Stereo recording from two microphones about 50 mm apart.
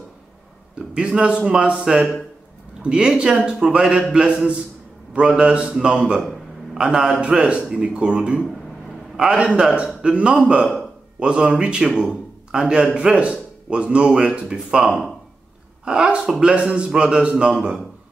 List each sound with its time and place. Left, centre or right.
0.7 s a man's voice: centre
6.2 s a sound: centre
6.8 s a man's voice: centre